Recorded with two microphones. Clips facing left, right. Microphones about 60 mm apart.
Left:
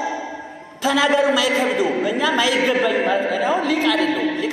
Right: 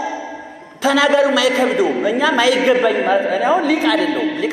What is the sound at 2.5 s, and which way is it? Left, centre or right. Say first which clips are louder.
Speech: right 4 dB; right.